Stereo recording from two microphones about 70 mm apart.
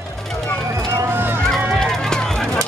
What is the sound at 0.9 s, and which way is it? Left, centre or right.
Run, right.